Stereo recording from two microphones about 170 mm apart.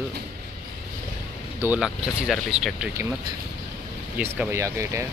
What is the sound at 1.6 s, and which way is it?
Speech, 5° right (ahead or behind).